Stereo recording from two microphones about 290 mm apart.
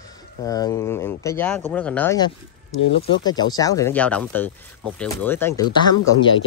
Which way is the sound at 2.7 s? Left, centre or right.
Left.